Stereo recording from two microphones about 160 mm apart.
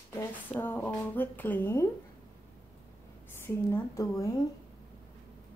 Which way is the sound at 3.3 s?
15° left (ahead or behind).